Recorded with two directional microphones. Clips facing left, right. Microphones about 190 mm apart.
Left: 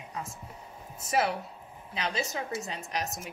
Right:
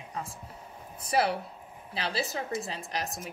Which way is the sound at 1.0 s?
35° right (ahead or behind).